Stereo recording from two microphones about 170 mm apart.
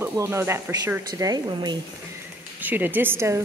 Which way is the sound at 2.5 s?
10° right (ahead or behind).